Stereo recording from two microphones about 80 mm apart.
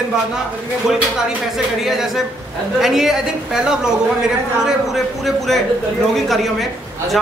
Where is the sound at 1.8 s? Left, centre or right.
Centre.